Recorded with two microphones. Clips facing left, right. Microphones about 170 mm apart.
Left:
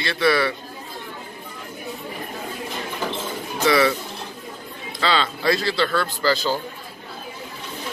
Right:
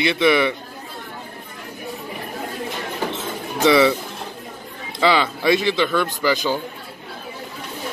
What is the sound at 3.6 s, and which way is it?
Speech, 25° right (ahead or behind).